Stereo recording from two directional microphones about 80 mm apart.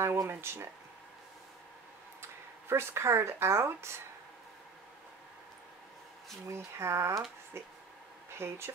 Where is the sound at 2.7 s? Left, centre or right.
Right.